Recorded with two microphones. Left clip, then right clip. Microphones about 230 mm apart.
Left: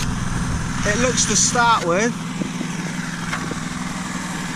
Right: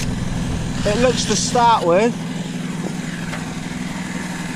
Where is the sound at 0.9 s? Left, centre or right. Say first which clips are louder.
Right 3 dB; left.